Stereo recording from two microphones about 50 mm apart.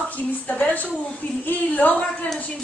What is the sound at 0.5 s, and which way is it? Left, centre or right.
A woman's voice, left.